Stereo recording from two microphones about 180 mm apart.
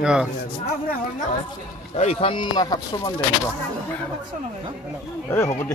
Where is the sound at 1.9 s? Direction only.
35° left (ahead or behind).